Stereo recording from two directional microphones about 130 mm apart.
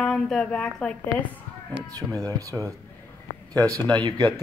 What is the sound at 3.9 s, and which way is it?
Speech, 30° right (ahead or behind).